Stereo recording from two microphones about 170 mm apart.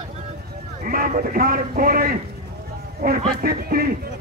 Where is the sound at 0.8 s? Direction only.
55° right (ahead or behind).